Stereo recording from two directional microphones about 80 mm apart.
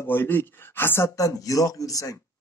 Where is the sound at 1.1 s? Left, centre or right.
Left.